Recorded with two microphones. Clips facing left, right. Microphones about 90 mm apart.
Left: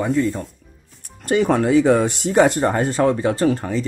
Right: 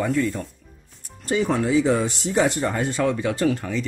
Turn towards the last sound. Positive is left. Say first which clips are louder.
# left 3 dB
turn(degrees=35)  # may be behind; listen again after turning